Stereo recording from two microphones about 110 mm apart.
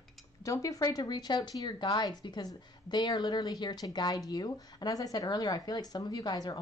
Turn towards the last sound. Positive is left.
turn(degrees=35)  # may be behind; listen again after turning